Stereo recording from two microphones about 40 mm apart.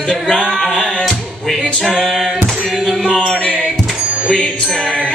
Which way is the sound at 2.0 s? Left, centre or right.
Centre.